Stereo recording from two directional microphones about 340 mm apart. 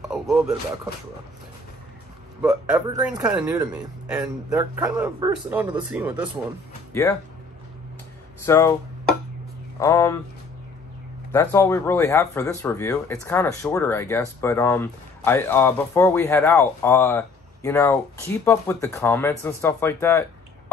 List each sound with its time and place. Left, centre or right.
0.1 s a man's voice: centre
2.4 s a man's voice: centre
6.9 s speech: centre
8.5 s speech: centre
9.8 s speech: centre
11.3 s speech: centre